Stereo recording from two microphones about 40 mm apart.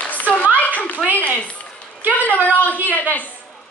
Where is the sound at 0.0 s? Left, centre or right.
Left.